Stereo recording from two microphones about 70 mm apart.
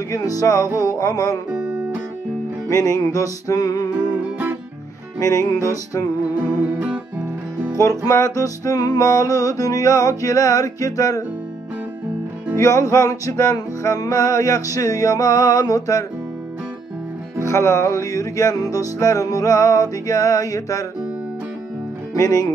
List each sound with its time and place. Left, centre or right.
0.1 s music: left
1.5 s music: right
2.7 s music: left
5.2 s music: left
6.2 s music: right
8.1 s music: left
12.5 s music: left
17.5 s music: left
22.1 s music: left